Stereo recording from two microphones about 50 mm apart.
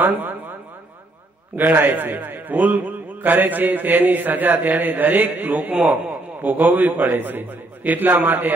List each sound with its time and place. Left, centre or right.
0.0 s a man's voice: right
1.6 s a man's voice: right